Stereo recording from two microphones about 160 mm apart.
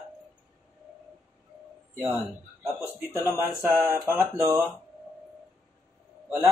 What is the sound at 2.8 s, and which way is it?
Speech, 15° right (ahead or behind).